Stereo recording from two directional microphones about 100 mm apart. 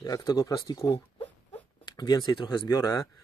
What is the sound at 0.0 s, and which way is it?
Speech, 40° left (ahead or behind).